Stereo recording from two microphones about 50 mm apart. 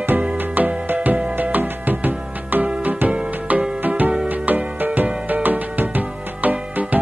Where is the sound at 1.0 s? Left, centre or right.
Right.